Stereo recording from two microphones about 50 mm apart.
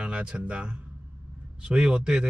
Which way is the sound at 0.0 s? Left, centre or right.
Right.